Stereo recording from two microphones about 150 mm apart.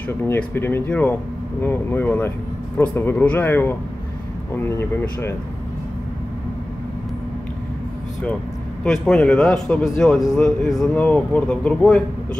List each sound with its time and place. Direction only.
0.2 s speech: 15° left (ahead or behind)
8.8 s a man's voice: 5° left (ahead or behind)